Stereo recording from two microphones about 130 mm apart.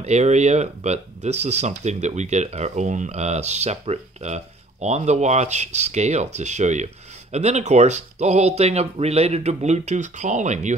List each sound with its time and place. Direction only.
0.0 s speech: 60° right (ahead or behind)